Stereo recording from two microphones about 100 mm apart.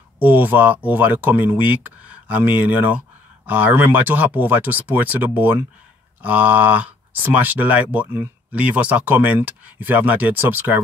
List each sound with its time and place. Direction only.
0.2 s speech: 15° right (ahead or behind)